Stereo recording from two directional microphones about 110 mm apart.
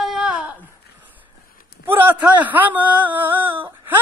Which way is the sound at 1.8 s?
20° right (ahead or behind).